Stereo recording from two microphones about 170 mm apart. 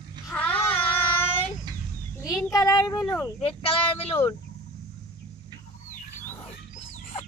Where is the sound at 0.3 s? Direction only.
10° left (ahead or behind).